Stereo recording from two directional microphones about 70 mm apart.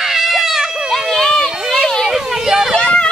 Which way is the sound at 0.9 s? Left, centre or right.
Centre.